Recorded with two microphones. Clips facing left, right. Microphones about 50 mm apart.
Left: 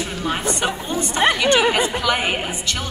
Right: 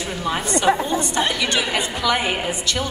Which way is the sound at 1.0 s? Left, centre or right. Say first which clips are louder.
Left 4 dB; left.